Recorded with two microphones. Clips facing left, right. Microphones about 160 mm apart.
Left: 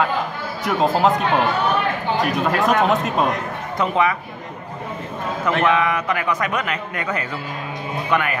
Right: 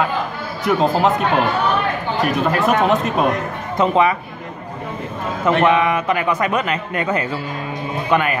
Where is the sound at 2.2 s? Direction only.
Centre (ahead or behind).